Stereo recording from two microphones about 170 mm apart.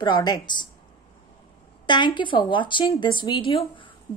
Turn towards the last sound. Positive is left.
turn(degrees=30)  # may be behind; listen again after turning